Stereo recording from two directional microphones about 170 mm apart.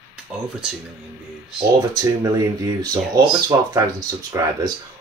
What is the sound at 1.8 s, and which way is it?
Speech, 20° right (ahead or behind).